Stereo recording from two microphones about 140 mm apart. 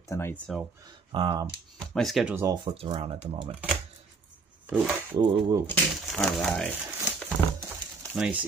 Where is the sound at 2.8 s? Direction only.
45° right (ahead or behind).